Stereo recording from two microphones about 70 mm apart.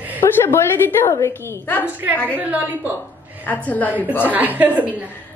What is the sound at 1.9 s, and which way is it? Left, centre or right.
A woman's voice, right.